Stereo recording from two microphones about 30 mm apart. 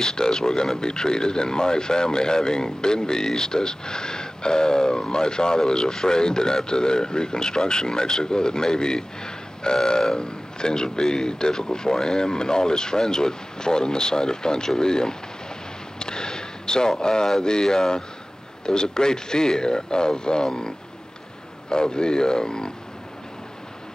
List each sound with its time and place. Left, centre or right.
0.0 s speech: left
16.0 s a sound: left
17.0 s speech: left